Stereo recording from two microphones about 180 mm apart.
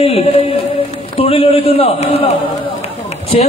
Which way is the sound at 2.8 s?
35° left (ahead or behind).